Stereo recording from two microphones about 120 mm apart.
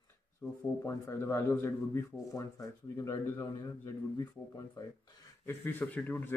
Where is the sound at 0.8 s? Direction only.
25° left (ahead or behind).